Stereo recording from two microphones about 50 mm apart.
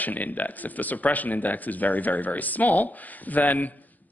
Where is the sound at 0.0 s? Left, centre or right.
Left.